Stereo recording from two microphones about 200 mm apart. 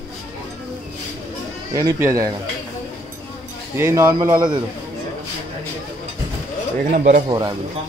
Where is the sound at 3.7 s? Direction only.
15° right (ahead or behind).